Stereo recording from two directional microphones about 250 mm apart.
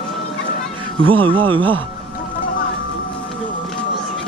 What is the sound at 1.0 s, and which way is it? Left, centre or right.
Speech, right.